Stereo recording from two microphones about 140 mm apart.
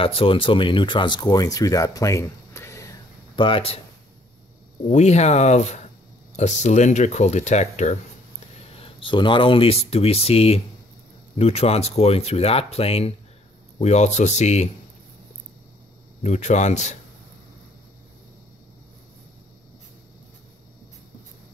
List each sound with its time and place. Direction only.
0.0 s speech: 40° left (ahead or behind); by 3.0 s 20° left (ahead or behind)
3.3 s speech: 40° left (ahead or behind)
4.8 s speech: 55° left (ahead or behind)
8.7 s speech: 40° left (ahead or behind)
16.2 s speech: 60° left (ahead or behind)